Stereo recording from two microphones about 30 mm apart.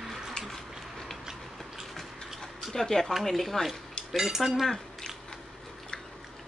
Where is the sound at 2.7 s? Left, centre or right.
Centre.